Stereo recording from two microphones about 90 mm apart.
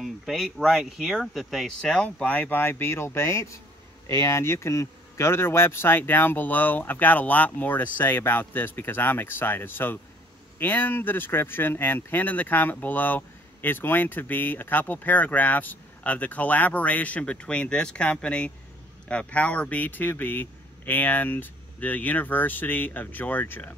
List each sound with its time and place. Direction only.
0.0 s speech: centre (ahead or behind); by 23.7 s 20° left (ahead or behind)